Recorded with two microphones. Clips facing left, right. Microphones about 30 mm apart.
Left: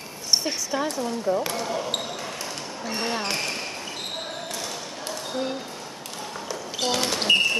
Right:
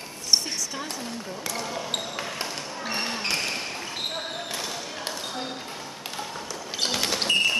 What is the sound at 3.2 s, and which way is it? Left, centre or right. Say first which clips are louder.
Basketball bounce: even; centre.